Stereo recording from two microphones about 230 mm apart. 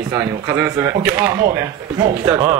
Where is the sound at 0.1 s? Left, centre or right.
Centre.